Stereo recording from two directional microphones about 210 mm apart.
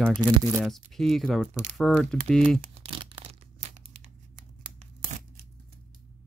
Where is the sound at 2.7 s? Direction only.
25° right (ahead or behind).